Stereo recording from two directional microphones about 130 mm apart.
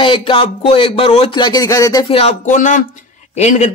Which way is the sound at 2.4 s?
75° left (ahead or behind).